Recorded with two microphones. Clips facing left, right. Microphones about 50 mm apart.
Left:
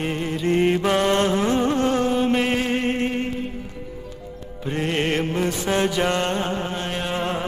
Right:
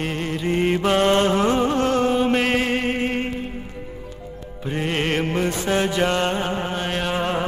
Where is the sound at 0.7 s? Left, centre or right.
Right.